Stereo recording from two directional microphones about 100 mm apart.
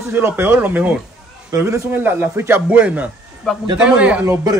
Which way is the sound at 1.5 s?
30° right (ahead or behind).